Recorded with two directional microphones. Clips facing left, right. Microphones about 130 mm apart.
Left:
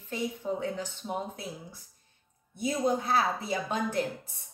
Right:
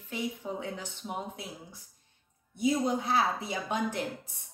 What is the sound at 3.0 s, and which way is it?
Speech, 15° right (ahead or behind).